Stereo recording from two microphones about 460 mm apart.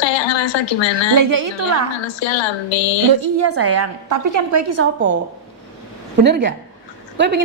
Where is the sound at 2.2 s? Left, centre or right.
Left.